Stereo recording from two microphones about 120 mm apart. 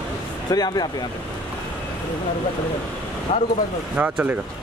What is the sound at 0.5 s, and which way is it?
Speech, 35° left (ahead or behind).